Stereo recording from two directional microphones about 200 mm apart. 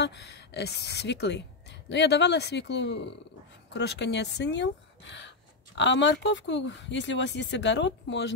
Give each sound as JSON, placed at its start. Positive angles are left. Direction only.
{"t": 0.0, "sound": "speech", "side_deg": 55}
{"t": 5.8, "sound": "speech", "side_deg": 65}